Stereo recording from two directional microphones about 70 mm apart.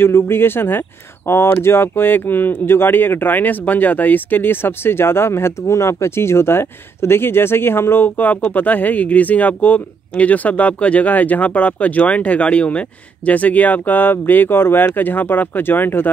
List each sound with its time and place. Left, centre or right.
0.0 s speech: left